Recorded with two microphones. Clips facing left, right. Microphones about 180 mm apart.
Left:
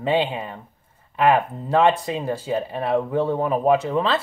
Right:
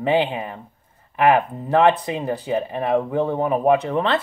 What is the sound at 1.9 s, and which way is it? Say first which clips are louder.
Speech: right 1 dB; centre (ahead or behind).